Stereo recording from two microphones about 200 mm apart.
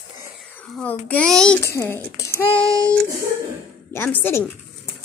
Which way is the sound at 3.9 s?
10° left (ahead or behind).